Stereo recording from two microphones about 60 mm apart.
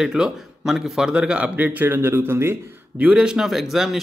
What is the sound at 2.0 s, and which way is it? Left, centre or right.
Speech, right.